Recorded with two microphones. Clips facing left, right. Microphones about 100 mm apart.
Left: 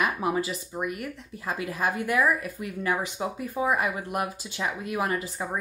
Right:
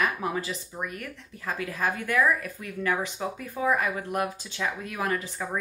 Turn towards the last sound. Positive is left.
turn(degrees=15)  # may be behind; listen again after turning